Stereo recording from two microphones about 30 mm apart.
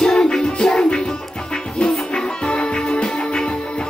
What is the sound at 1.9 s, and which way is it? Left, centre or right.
Music, left.